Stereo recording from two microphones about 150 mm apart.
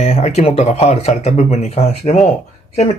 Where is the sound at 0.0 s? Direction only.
45° left (ahead or behind).